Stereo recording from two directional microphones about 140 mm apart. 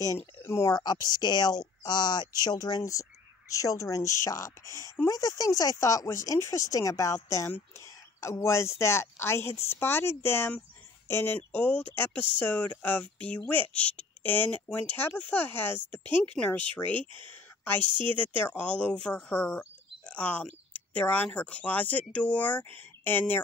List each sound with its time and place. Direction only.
0.2 s speech: 15° left (ahead or behind)
17.1 s speech: 35° right (ahead or behind)
18.1 s speech: 15° left (ahead or behind)